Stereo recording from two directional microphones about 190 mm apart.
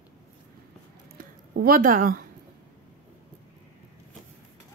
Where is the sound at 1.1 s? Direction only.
50° right (ahead or behind).